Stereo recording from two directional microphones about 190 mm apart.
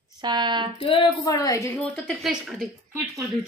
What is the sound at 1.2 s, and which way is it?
A woman's voice, 20° left (ahead or behind).